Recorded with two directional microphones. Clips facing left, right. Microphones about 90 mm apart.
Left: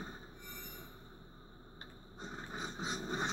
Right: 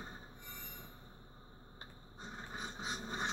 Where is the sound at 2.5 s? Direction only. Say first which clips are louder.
Left 3 dB; 25° left (ahead or behind).